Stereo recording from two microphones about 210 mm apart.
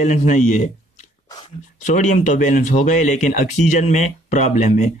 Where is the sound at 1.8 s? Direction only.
35° left (ahead or behind).